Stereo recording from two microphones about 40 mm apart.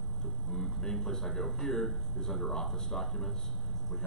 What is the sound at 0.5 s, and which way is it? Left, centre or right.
Speech, centre.